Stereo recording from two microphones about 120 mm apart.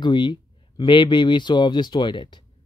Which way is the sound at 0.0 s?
40° left (ahead or behind).